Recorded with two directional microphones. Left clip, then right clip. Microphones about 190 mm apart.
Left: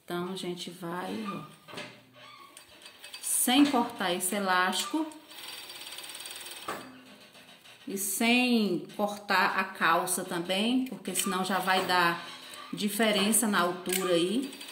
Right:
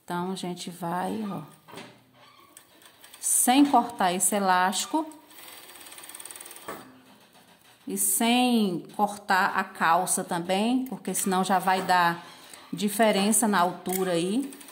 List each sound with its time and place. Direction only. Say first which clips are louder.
0.1 s a woman's voice: right 3 dB; 60° right (ahead or behind)
3.2 s a woman's voice: right 4 dB; 65° right (ahead or behind)
7.9 s a woman's voice: right 2 dB; 65° right (ahead or behind)